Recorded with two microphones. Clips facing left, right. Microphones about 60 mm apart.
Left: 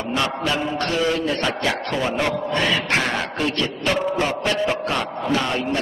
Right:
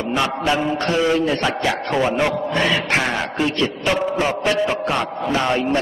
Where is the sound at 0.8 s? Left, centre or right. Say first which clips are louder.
Right 4 dB; centre.